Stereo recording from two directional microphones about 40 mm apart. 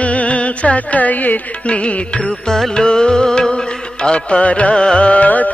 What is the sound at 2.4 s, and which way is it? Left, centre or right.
Music, centre.